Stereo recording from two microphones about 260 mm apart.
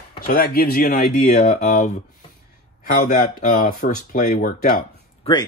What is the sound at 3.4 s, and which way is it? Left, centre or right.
Speech, left.